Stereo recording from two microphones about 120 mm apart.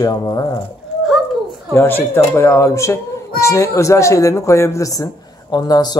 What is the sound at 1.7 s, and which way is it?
Speech, 20° left (ahead or behind).